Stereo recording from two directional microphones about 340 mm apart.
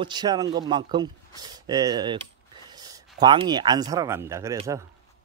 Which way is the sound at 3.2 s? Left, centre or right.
Centre.